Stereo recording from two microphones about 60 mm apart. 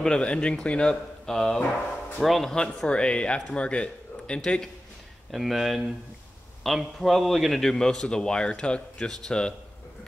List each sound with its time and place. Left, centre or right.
0.0 s a man's voice: centre
2.5 s a man's voice: centre
5.3 s a man's voice: centre